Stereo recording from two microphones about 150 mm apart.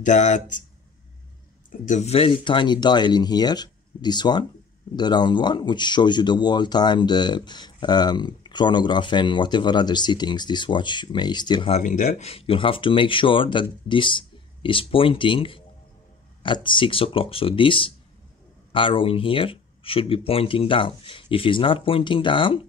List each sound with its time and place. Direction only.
0.0 s speech: 55° left (ahead or behind)
1.7 s speech: 55° left (ahead or behind); by 11.7 s 30° left (ahead or behind)
11.7 s speech: 55° left (ahead or behind); by 22.7 s 35° left (ahead or behind)